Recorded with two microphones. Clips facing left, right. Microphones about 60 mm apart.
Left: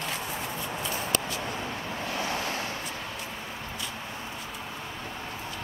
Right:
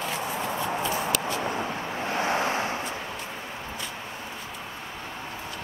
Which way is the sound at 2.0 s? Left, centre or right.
Right.